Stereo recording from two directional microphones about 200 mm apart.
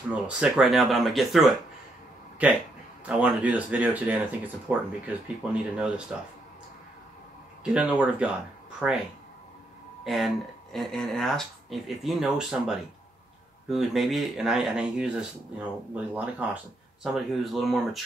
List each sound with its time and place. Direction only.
0.1 s speech: 5° right (ahead or behind)
3.1 s speech: 5° right (ahead or behind)
7.6 s speech: 5° right (ahead or behind)
10.0 s speech: centre (ahead or behind)